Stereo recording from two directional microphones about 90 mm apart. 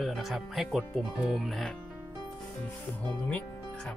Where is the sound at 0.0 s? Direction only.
Centre (ahead or behind).